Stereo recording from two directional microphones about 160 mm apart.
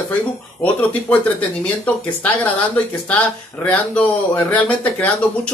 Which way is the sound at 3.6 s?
10° left (ahead or behind).